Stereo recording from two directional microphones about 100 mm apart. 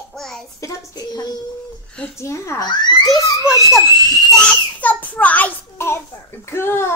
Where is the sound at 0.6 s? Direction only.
35° left (ahead or behind).